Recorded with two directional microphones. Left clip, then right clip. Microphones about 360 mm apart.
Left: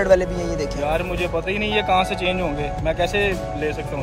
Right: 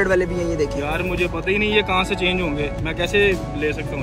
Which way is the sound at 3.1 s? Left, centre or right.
Left.